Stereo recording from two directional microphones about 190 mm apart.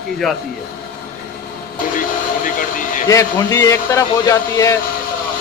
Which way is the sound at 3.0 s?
15° left (ahead or behind).